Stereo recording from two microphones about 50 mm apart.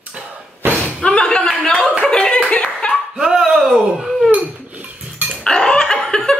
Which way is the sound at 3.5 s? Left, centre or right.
Centre.